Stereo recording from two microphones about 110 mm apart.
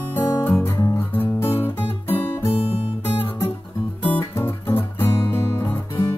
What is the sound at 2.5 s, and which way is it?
Guitar, 60° left (ahead or behind).